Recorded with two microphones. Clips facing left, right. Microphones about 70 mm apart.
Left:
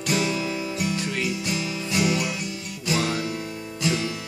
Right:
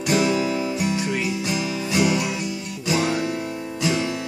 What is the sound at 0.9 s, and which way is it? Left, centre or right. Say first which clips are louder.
Music: right 3 dB; centre.